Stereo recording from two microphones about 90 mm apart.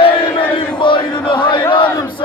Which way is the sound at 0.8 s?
65° left (ahead or behind).